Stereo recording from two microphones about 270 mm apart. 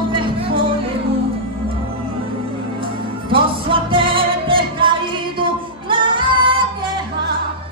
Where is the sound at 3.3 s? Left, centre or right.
Centre.